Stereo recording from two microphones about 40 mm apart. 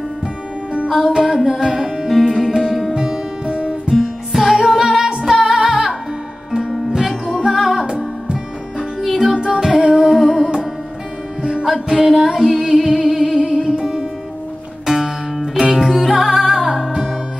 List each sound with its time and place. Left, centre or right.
1.0 s music: centre
2.0 s music: centre
3.0 s music: right
3.9 s music: centre
7.2 s music: centre
7.8 s music: right
9.0 s music: centre
9.3 s music: right
9.6 s humming: centre
9.9 s music: centre
11.6 s music: centre